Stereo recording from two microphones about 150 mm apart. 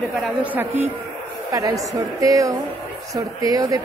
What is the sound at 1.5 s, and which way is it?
A woman's voice, 25° right (ahead or behind).